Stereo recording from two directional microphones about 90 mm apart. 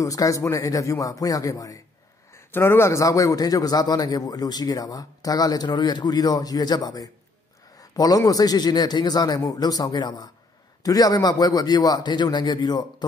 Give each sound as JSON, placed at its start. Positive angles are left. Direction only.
{"t": 0.0, "sound": "speech", "side_deg": 40}
{"t": 2.3, "sound": "a man's voice", "side_deg": 30}
{"t": 7.8, "sound": "a sound", "side_deg": 45}
{"t": 8.2, "sound": "a man's voice", "side_deg": 45}